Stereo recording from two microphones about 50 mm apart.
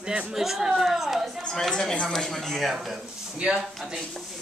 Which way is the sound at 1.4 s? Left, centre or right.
Centre.